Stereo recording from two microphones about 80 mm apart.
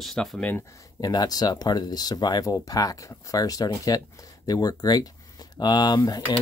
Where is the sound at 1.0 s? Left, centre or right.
Left.